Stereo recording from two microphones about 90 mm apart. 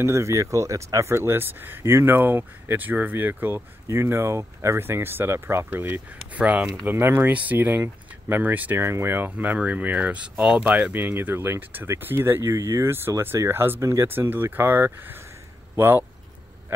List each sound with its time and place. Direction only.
0.0 s speech: 30° right (ahead or behind)